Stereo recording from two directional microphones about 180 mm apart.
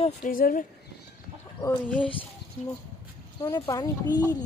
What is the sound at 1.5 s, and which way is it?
Speech, 15° left (ahead or behind).